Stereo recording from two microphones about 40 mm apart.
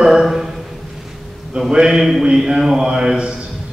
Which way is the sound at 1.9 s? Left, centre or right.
Centre.